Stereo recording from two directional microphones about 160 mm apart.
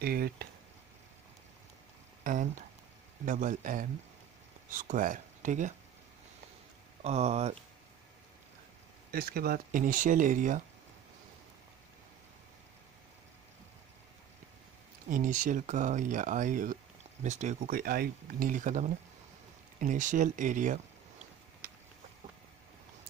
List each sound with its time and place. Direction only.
0.0 s speech: 75° right (ahead or behind)
2.3 s speech: 55° right (ahead or behind)
7.0 s speech: 40° right (ahead or behind)
9.1 s speech: 70° right (ahead or behind); by 10.6 s 55° right (ahead or behind)
15.0 s speech: 55° right (ahead or behind)